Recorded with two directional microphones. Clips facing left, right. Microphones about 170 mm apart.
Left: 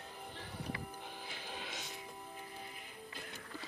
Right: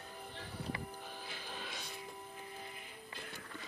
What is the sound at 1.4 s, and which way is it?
Music, 15° left (ahead or behind).